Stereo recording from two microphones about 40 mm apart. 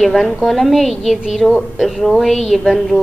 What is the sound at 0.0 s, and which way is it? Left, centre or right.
A woman's voice, centre.